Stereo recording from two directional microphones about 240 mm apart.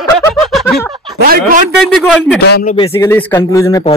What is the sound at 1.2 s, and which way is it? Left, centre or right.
Speech, right.